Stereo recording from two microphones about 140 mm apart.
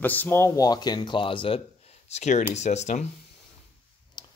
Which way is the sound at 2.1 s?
55° left (ahead or behind).